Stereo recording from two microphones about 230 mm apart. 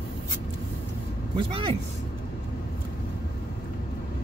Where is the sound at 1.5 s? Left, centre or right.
Right.